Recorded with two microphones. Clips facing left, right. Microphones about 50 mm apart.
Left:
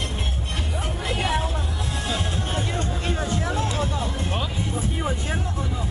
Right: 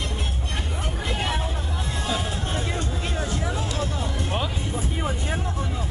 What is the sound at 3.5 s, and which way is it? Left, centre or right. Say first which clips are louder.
Vehicle: left 3 dB; centre.